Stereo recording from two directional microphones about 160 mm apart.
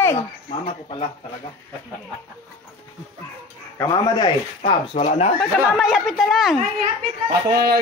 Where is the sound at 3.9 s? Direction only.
30° left (ahead or behind).